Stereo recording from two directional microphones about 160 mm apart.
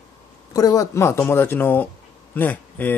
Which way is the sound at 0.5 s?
20° left (ahead or behind).